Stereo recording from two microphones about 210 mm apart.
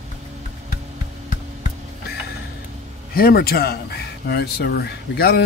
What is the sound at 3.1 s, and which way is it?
Speech, 45° left (ahead or behind).